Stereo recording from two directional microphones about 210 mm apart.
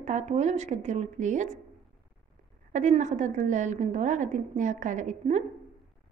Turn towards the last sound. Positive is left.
turn(degrees=-35)  # may be behind; listen again after turning